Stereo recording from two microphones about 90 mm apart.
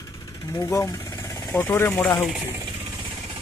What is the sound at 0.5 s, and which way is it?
Speech, 35° left (ahead or behind).